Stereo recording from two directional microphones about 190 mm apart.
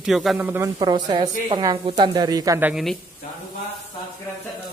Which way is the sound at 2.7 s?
Centre (ahead or behind).